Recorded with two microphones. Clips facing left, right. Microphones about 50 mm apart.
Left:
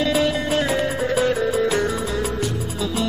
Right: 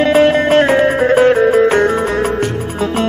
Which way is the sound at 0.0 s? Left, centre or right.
Right.